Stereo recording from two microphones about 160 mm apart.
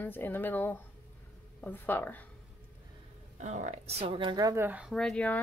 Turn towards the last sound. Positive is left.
turn(degrees=5)  # may be behind; listen again after turning